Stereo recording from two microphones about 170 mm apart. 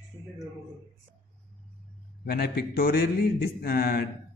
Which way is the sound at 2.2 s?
65° left (ahead or behind).